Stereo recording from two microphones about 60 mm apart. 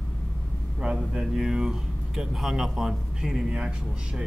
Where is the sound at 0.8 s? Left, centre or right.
Centre.